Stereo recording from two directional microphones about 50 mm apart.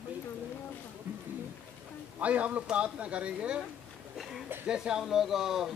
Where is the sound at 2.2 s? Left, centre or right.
Right.